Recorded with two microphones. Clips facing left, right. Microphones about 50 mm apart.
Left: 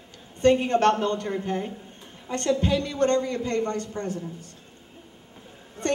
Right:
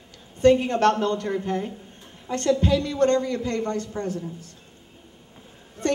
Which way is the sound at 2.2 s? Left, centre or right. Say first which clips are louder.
Right 2 dB; left.